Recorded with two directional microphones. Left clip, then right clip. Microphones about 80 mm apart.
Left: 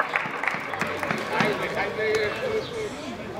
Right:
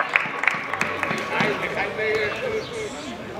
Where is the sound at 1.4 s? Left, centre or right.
Centre.